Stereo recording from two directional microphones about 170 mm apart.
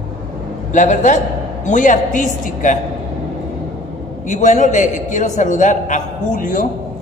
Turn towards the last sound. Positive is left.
turn(degrees=50)  # may be behind; listen again after turning